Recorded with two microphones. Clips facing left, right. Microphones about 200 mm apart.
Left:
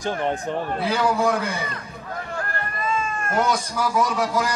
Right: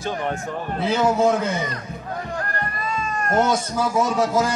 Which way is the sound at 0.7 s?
25° right (ahead or behind).